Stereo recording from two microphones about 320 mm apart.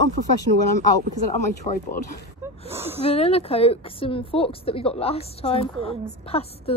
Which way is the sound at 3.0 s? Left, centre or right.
Centre.